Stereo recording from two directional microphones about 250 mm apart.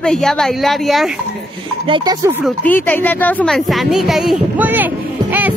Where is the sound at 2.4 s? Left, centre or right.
Centre.